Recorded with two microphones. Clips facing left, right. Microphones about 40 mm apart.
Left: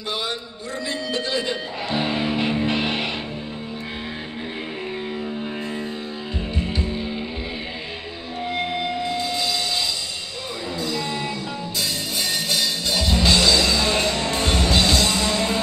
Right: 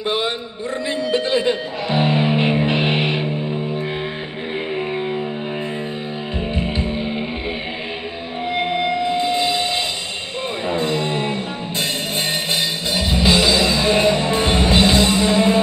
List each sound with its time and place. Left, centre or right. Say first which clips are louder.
0.0 s a sound: right 7 dB; right
0.8 s music: right 6 dB; right
6.5 s music: right 3 dB; right
8.5 s music: right 5 dB; right
12.4 s music: right 2 dB; right